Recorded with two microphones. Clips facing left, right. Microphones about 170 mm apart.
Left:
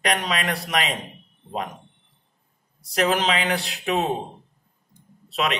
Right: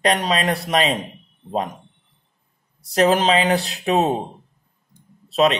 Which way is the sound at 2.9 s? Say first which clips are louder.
Right 5 dB; 35° right (ahead or behind).